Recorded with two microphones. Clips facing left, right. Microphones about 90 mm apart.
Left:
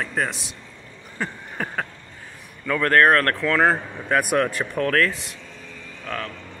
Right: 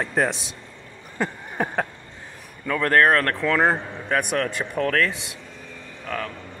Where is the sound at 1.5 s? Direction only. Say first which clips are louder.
Right 4 dB; 30° right (ahead or behind).